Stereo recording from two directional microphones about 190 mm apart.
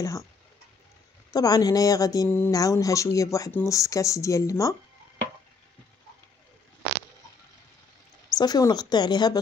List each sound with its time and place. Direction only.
0.0 s speech: 15° left (ahead or behind)
1.3 s speech: 20° left (ahead or behind)
8.4 s speech: 20° left (ahead or behind)